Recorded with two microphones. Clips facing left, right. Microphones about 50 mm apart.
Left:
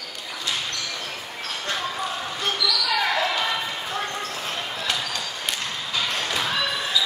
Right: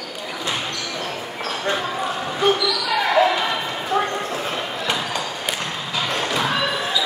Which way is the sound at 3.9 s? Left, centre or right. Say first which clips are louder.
Right 11 dB; right.